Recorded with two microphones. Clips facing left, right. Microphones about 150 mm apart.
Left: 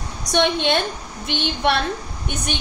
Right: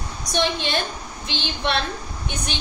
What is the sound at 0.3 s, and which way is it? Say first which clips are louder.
A woman's voice: left 5 dB; 65° left (ahead or behind).